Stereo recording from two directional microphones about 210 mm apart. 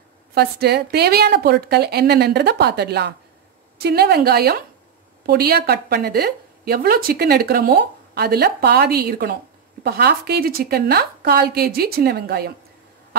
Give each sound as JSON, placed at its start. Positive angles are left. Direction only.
{"t": 0.3, "sound": "a woman's voice", "side_deg": -50}